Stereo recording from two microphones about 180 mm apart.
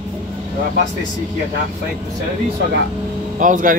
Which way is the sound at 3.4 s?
45° right (ahead or behind).